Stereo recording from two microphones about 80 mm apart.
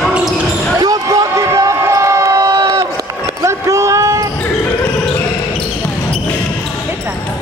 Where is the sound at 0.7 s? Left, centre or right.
Right.